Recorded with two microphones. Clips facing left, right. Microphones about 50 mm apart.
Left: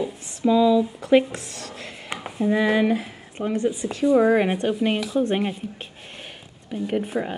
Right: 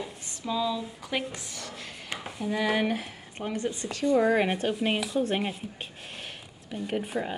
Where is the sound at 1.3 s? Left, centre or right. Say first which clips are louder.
Left 5 dB; left.